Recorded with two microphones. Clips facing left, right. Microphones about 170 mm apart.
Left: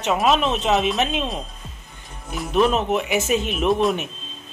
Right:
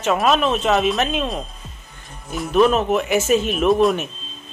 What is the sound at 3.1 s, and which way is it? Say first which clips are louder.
Speech: right 4 dB; 40° right (ahead or behind).